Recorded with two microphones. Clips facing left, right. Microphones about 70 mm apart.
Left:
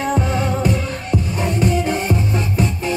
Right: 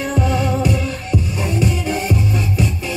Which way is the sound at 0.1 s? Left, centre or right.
Left.